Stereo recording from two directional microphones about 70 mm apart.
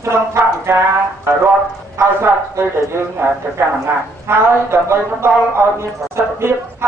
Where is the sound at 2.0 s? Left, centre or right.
Right.